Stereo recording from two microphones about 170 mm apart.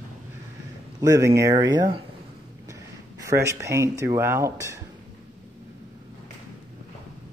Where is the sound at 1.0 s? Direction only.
20° right (ahead or behind).